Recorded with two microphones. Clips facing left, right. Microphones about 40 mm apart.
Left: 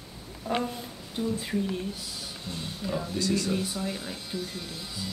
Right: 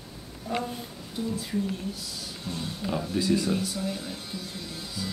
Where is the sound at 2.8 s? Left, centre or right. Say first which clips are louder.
Right 2 dB; centre.